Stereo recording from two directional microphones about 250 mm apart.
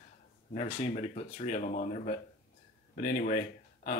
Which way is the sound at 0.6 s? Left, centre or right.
Left.